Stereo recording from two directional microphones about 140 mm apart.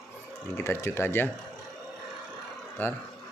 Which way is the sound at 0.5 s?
20° left (ahead or behind).